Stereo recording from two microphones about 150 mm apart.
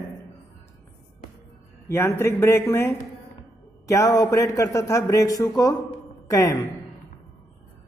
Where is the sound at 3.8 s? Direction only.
20° left (ahead or behind).